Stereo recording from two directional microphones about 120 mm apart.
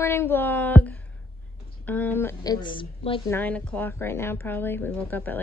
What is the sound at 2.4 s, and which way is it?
Speech, 40° left (ahead or behind).